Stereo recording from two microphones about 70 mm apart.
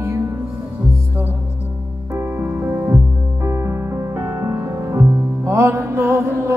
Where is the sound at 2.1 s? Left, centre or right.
Right.